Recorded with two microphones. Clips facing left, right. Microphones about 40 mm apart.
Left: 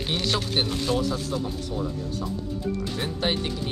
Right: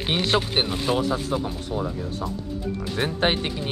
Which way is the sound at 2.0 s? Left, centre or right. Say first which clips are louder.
Right 1 dB; right.